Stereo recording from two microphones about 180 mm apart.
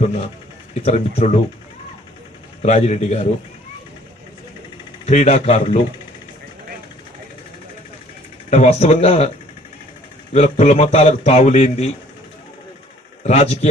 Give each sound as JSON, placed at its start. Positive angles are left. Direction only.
{"t": 0.0, "sound": "speech", "side_deg": 35}
{"t": 2.6, "sound": "speech", "side_deg": 40}
{"t": 5.0, "sound": "speech", "side_deg": 40}
{"t": 8.5, "sound": "speech", "side_deg": 35}
{"t": 10.3, "sound": "speech", "side_deg": 40}
{"t": 13.2, "sound": "speech", "side_deg": 35}